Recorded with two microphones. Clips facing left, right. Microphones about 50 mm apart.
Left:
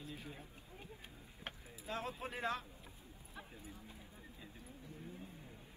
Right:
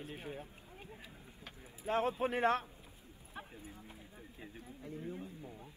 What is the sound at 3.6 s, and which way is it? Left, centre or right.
Speech, right.